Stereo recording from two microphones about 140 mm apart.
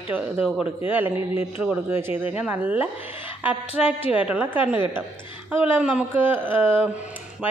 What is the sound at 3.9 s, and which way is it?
Speech, 45° left (ahead or behind).